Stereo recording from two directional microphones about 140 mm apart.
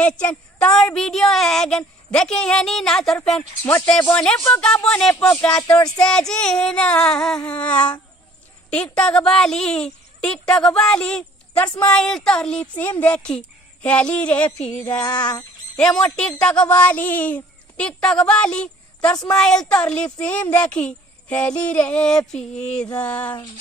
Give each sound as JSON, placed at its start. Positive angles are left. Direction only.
{"t": 0.0, "sound": "speech", "side_deg": 10}
{"t": 3.6, "sound": "speech", "side_deg": 15}
{"t": 14.9, "sound": "jingle bell", "side_deg": 30}
{"t": 15.8, "sound": "speech", "side_deg": 5}